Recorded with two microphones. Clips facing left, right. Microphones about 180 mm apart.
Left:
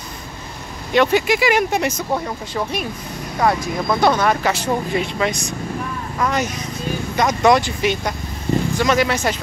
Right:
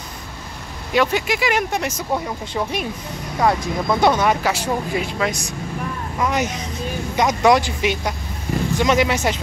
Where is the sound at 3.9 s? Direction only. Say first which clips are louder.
Even; 15° right (ahead or behind).